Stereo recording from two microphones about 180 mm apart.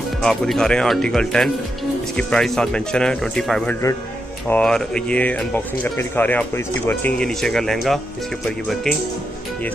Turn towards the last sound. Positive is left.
turn(degrees=0)  # may be behind; listen again after turning